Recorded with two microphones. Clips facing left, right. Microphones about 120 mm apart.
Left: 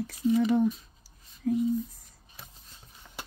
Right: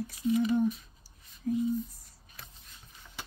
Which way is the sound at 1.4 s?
90° left.